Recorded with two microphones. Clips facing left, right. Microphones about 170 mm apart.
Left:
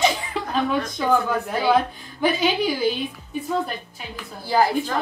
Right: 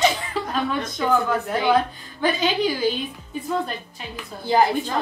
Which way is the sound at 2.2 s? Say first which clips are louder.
Left 1 dB; 10° left (ahead or behind).